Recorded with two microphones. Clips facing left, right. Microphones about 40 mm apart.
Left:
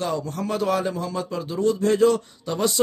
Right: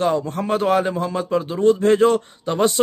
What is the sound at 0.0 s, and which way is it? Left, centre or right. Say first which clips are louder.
A man's voice: right 6 dB; right.